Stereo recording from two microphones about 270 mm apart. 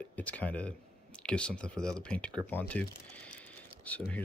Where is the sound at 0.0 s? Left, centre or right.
Centre.